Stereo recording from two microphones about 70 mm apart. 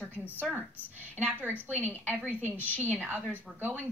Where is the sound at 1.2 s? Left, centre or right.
Right.